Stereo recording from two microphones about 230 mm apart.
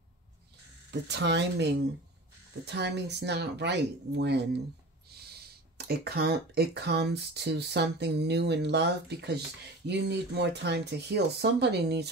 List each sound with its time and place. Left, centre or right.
1.0 s speech: right